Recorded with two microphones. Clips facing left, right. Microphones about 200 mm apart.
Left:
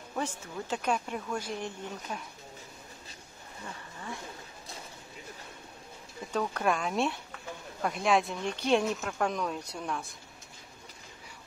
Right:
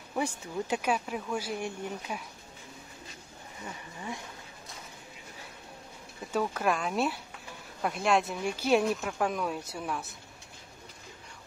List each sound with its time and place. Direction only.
0.1 s speech: 10° right (ahead or behind)
3.6 s speech: 15° right (ahead or behind)
6.3 s speech: 5° right (ahead or behind)